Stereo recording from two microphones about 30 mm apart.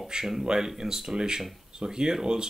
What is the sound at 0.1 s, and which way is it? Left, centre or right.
Speech, right.